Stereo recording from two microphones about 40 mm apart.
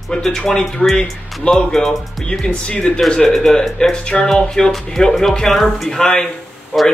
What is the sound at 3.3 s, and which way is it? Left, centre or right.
Speech, centre.